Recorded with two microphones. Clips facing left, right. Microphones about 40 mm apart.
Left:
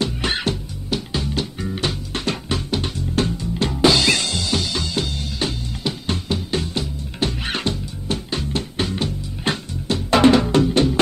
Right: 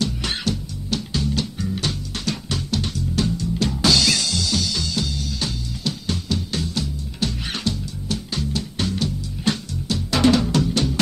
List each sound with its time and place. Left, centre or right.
0.0 s music: left
0.8 s music: left